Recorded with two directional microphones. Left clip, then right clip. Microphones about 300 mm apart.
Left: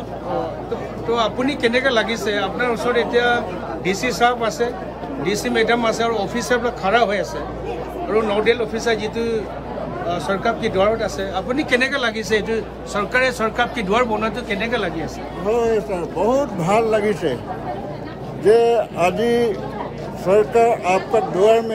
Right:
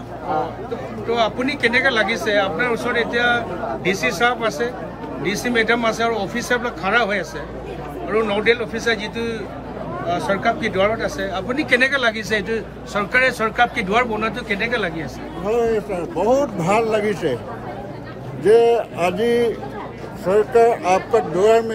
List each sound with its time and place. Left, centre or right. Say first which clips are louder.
1.1 s a man's voice: even; centre
18.4 s a man's voice: even; centre